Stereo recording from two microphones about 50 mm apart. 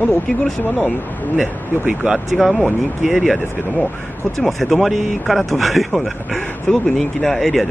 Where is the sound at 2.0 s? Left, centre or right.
Centre.